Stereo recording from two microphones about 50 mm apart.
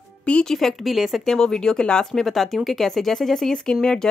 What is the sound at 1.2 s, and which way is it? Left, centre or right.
Speech, centre.